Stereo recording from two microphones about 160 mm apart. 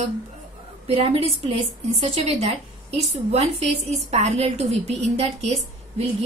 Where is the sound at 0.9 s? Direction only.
35° right (ahead or behind).